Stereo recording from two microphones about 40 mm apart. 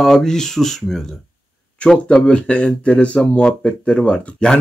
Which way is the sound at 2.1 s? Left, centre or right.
Left.